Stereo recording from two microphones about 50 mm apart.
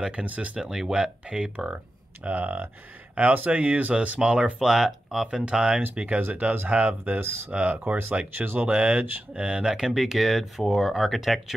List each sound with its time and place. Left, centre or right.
0.1 s speech: right
0.6 s speech: centre
1.2 s speech: right
4.6 s speech: centre
5.4 s speech: centre
7.2 s speech: right
7.7 s speech: right; by 11.5 s centre